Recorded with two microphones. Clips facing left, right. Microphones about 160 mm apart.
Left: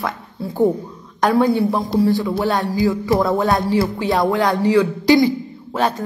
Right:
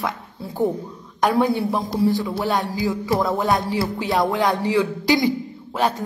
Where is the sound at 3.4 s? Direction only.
20° right (ahead or behind).